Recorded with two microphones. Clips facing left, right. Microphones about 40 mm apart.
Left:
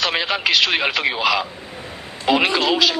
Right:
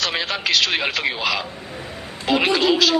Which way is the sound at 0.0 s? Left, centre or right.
Centre.